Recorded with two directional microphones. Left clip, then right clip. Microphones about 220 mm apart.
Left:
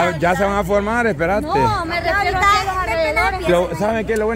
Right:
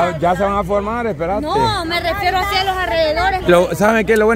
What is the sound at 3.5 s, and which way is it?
Speech, 30° right (ahead or behind).